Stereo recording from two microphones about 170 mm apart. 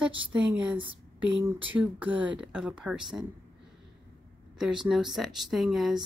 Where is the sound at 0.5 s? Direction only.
5° right (ahead or behind).